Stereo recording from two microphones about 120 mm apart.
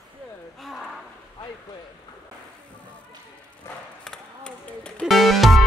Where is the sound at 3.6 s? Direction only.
20° left (ahead or behind).